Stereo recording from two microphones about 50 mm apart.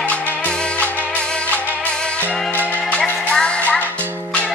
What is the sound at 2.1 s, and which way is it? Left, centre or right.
Music, left.